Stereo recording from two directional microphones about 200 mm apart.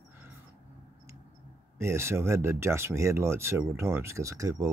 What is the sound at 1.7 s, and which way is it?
Speech, 15° right (ahead or behind).